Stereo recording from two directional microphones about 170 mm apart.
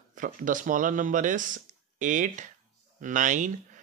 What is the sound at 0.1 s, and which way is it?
A man's voice, 50° right (ahead or behind).